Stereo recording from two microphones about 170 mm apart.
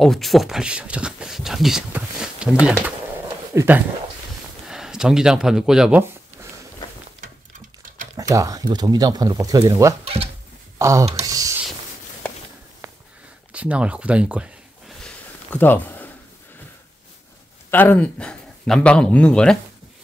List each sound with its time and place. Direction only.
0.0 s speech: centre (ahead or behind)
3.5 s speech: 10° right (ahead or behind)
8.2 s speech: 20° right (ahead or behind)
10.0 s a sound: 35° right (ahead or behind)
10.8 s speech: 20° right (ahead or behind)
11.1 s a sound: 20° right (ahead or behind)
13.5 s speech: 5° right (ahead or behind)
15.0 s a sound: 10° left (ahead or behind)
17.6 s a man's voice: 10° left (ahead or behind)